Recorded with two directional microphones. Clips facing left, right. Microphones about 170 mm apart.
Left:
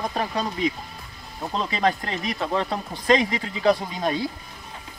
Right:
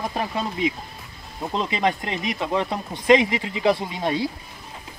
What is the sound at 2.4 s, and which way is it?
Speech, 5° right (ahead or behind).